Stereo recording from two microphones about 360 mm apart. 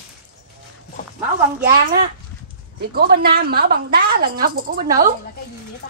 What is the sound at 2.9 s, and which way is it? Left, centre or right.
A woman's voice, right.